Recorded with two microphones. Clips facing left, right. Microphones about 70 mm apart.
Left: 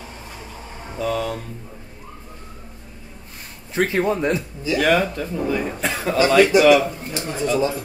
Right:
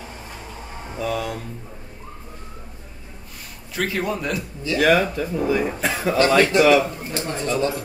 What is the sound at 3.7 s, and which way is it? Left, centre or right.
Speech, left.